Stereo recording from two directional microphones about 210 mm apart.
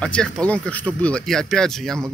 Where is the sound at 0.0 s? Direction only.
5° left (ahead or behind).